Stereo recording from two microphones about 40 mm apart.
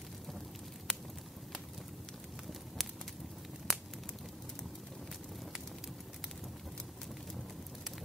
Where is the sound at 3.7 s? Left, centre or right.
Centre.